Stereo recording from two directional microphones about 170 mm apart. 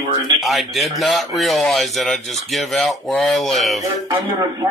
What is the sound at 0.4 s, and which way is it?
Speech, centre (ahead or behind).